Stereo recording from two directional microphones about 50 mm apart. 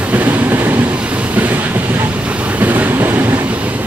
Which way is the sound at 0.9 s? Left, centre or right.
Right.